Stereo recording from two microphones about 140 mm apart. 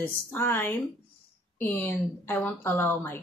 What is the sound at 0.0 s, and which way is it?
A woman's voice, 15° left (ahead or behind).